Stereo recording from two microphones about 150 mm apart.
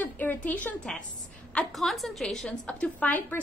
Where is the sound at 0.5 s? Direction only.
10° left (ahead or behind).